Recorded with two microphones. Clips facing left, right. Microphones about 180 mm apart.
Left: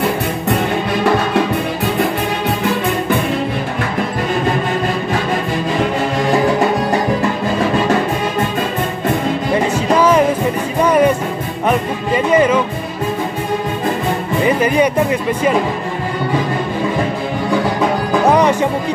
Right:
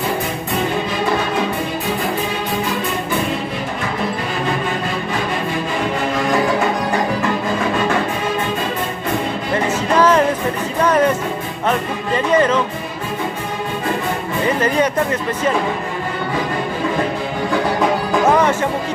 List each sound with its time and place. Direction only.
9.9 s music: 10° left (ahead or behind)
14.4 s music: 10° left (ahead or behind)
18.2 s music: 15° left (ahead or behind)